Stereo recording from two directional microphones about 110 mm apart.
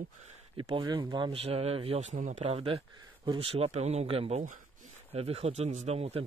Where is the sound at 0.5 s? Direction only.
45° right (ahead or behind).